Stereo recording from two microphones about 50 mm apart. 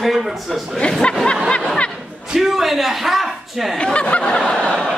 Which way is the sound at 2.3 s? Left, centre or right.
Centre.